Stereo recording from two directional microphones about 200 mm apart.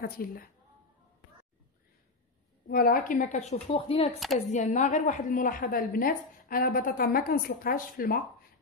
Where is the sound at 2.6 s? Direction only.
50° left (ahead or behind); by 4.0 s 25° left (ahead or behind).